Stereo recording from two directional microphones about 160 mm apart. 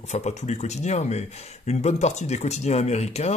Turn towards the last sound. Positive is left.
turn(degrees=45)  # may be behind; listen again after turning